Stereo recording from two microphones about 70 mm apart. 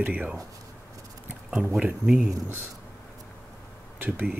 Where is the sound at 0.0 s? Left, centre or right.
Centre.